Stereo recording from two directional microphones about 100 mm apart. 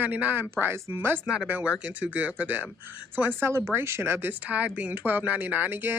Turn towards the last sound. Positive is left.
turn(degrees=-20)  # may be behind; listen again after turning